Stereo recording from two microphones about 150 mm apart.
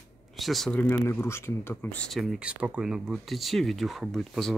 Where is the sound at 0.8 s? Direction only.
15° left (ahead or behind).